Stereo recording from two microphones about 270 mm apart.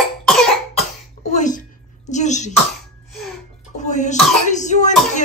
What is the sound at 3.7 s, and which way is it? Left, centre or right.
Music, left.